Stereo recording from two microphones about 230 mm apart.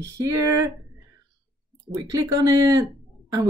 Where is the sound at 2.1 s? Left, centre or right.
Centre.